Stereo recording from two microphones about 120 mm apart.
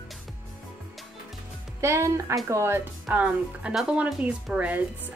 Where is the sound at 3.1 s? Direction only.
10° right (ahead or behind).